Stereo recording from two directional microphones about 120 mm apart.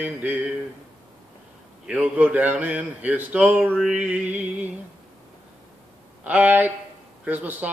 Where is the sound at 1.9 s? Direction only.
10° right (ahead or behind).